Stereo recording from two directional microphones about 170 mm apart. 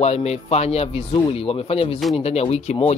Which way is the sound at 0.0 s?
40° left (ahead or behind).